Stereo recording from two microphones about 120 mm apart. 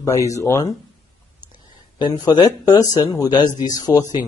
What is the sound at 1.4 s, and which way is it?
Speech, 40° left (ahead or behind).